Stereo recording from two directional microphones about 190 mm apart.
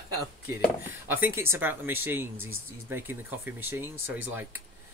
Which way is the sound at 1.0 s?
10° right (ahead or behind).